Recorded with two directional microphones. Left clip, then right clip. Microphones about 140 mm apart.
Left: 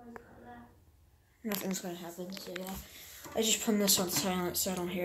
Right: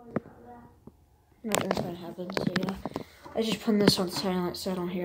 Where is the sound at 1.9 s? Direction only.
20° right (ahead or behind).